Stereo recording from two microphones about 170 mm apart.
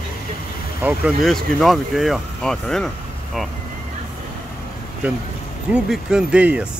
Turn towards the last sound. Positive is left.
turn(degrees=-5)  # may be behind; listen again after turning